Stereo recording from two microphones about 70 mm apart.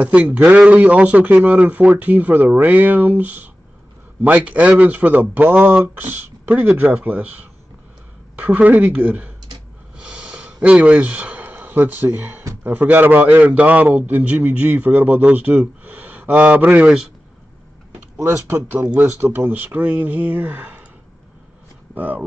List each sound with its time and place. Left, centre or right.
0.0 s a man's voice: right
8.6 s a man's voice: right
9.9 s a sound: centre
12.6 s a man's voice: right
16.8 s a man's voice: centre
18.1 s a man's voice: right
21.9 s speech: right